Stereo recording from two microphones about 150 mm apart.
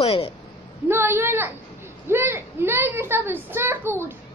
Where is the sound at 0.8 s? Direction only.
15° right (ahead or behind).